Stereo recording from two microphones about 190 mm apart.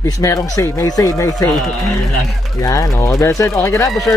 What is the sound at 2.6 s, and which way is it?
A man's voice, 15° left (ahead or behind).